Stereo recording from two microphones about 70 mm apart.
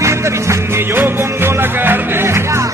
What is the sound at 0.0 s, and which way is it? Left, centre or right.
Music, right.